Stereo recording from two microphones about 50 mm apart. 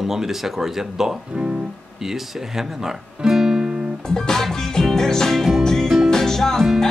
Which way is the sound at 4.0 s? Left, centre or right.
Centre.